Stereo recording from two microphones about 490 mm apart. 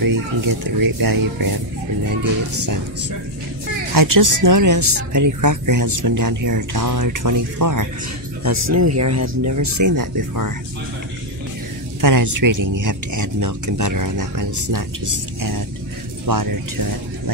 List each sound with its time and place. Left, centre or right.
0.0 s speech: right
3.9 s speech: right
12.0 s speech: right